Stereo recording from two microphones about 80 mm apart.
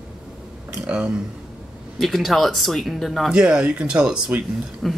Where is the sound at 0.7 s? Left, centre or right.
Centre.